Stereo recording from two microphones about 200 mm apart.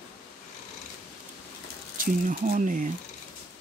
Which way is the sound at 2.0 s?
45° right (ahead or behind).